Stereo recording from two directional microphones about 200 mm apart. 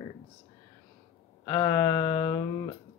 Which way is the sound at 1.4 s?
15° left (ahead or behind).